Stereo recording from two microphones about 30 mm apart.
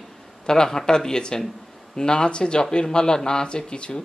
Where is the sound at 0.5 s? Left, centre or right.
Centre.